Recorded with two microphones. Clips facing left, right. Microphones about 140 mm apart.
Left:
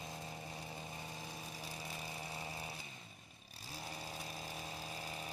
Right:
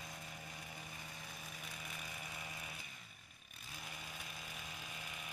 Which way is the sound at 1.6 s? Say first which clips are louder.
Left 4 dB; 30° left (ahead or behind).